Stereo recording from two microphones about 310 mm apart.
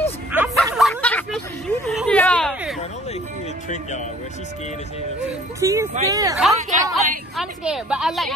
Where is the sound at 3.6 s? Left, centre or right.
Left.